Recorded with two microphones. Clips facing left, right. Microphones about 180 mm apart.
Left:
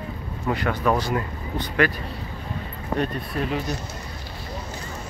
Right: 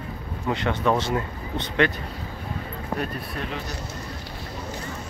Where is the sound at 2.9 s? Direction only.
5° right (ahead or behind).